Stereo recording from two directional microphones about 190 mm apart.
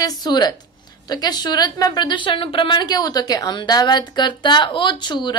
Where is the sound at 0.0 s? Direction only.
20° left (ahead or behind).